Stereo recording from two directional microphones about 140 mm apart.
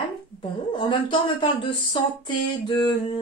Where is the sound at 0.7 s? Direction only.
35° left (ahead or behind).